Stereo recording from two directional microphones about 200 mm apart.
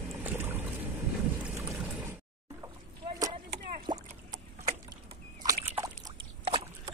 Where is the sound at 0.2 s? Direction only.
10° right (ahead or behind).